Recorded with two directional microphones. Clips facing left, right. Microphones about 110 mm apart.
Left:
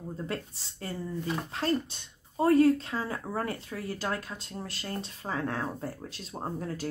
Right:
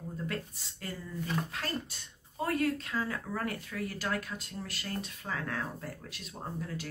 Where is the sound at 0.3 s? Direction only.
30° left (ahead or behind).